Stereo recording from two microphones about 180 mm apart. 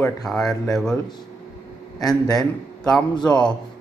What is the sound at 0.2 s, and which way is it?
Speech, centre (ahead or behind).